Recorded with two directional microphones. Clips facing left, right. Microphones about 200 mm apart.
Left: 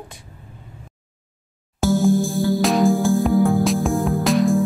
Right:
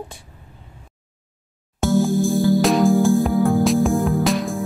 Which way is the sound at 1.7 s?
Centre (ahead or behind).